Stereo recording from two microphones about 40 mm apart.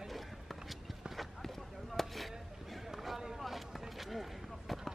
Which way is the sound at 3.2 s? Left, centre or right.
Centre.